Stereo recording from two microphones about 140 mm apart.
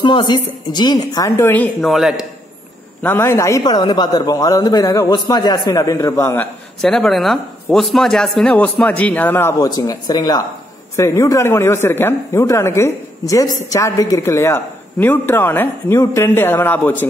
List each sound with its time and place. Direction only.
0.0 s a man's voice: 30° left (ahead or behind); by 1.9 s 10° left (ahead or behind)
1.9 s a man's voice: centre (ahead or behind)
3.0 s a man's voice: 15° left (ahead or behind)
6.8 s speech: 5° left (ahead or behind)
9.8 s a man's voice: 30° left (ahead or behind)